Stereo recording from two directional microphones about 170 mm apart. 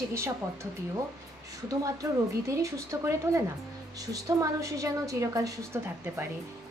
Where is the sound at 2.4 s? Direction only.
15° right (ahead or behind).